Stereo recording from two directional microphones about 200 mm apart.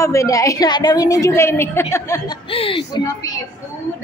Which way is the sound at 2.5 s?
25° left (ahead or behind).